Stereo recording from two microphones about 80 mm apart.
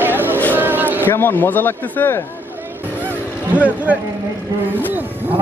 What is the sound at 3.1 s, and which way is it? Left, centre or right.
Vehicle, centre.